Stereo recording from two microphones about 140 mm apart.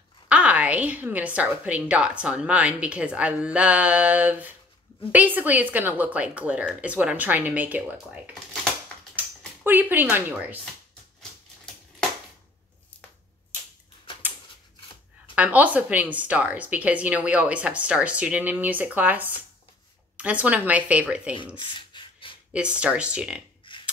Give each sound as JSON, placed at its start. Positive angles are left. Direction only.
{"t": 0.3, "sound": "a woman's voice", "side_deg": -10}
{"t": 9.6, "sound": "a woman's voice", "side_deg": -15}
{"t": 15.3, "sound": "a woman's voice", "side_deg": -10}
{"t": 21.5, "sound": "rub", "side_deg": 35}
{"t": 22.5, "sound": "a woman's voice", "side_deg": -10}
{"t": 23.7, "sound": "a sound", "side_deg": 35}